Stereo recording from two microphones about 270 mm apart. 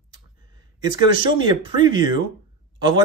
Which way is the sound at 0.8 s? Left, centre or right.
Centre.